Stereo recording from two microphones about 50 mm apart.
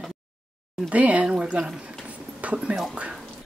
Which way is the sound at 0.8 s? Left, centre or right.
Right.